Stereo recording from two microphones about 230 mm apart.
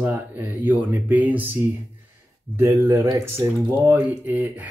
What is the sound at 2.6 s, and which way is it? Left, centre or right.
Speech, centre.